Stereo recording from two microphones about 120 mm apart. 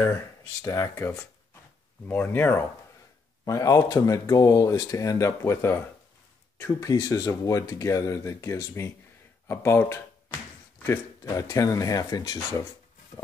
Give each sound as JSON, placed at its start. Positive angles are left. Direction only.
{"t": 0.6, "sound": "speech", "side_deg": 25}
{"t": 3.4, "sound": "speech", "side_deg": 30}